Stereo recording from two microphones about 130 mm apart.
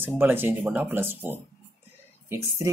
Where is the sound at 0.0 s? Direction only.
15° right (ahead or behind).